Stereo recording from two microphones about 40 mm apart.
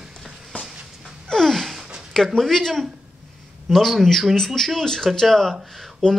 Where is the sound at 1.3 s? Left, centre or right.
Centre.